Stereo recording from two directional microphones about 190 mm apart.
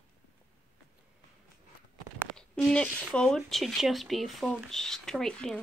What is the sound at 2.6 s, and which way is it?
Speech, 5° left (ahead or behind).